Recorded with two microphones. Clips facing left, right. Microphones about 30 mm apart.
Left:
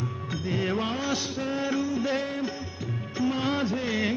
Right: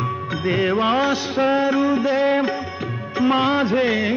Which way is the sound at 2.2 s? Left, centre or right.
Right.